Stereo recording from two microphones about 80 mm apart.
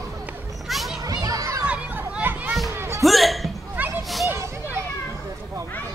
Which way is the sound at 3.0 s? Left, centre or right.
Centre.